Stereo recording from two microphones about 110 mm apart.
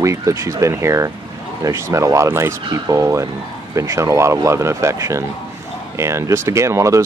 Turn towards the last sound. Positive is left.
turn(degrees=-25)  # may be behind; listen again after turning